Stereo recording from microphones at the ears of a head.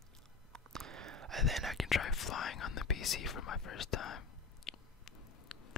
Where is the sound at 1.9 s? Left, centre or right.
Left.